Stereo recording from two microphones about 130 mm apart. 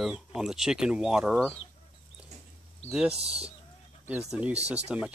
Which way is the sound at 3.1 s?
50° right (ahead or behind).